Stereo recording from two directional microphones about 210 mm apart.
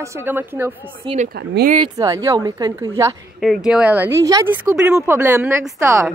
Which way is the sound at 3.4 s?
Centre (ahead or behind).